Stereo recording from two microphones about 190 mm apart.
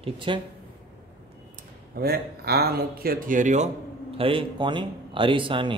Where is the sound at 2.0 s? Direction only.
55° right (ahead or behind); by 3.7 s 40° right (ahead or behind).